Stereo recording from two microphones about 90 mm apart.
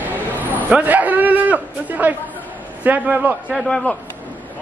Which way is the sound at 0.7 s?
15° right (ahead or behind).